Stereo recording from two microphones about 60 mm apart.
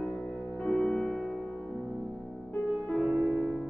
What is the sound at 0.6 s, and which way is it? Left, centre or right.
Music, centre.